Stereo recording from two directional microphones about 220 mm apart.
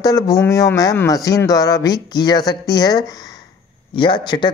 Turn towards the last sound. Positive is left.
turn(degrees=20)  # may be behind; listen again after turning